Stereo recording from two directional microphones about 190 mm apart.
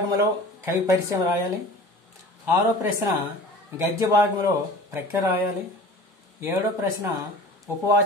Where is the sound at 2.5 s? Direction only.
15° right (ahead or behind).